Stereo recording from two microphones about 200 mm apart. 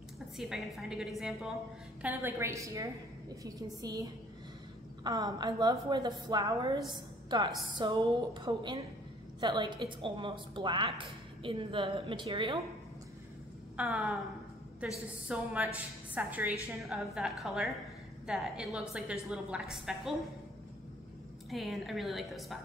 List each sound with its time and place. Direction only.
0.4 s a woman's voice: centre (ahead or behind); by 12.5 s 25° right (ahead or behind)
13.7 s a woman's voice: 5° right (ahead or behind)
15.2 s a woman's voice: 5° right (ahead or behind)
21.5 s a woman's voice: centre (ahead or behind)